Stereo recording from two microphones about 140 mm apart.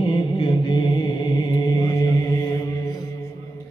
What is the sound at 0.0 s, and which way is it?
Music, 35° left (ahead or behind).